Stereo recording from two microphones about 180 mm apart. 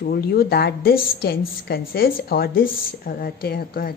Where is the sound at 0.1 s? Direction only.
60° left (ahead or behind).